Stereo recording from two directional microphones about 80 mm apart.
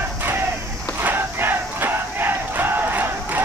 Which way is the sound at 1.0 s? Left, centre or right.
Right.